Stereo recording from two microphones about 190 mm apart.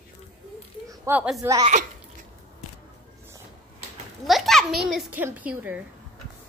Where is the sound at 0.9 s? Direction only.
10° right (ahead or behind).